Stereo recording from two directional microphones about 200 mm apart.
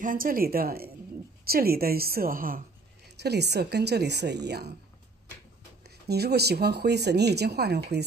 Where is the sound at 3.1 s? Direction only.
55° right (ahead or behind).